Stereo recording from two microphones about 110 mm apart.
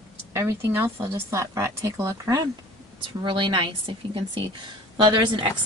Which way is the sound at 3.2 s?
50° right (ahead or behind).